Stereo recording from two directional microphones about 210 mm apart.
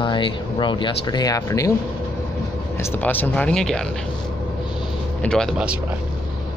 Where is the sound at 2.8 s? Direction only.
10° left (ahead or behind).